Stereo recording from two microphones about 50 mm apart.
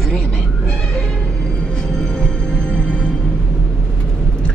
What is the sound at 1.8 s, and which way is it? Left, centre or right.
Music, centre.